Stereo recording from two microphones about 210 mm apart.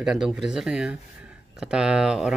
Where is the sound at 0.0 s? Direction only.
Centre (ahead or behind).